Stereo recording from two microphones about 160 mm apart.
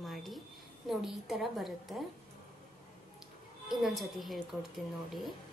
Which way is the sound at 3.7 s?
Centre (ahead or behind).